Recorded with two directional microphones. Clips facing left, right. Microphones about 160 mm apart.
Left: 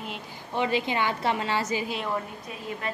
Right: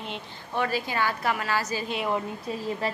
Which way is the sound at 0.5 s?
20° left (ahead or behind).